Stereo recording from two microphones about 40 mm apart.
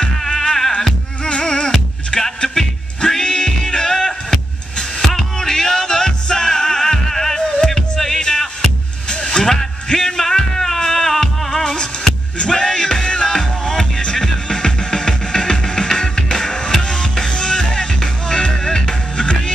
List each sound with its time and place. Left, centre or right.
0.2 s music: centre
9.1 s a sound: centre
12.5 s music: centre